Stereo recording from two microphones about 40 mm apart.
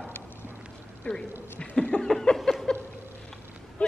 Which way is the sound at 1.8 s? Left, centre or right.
Left.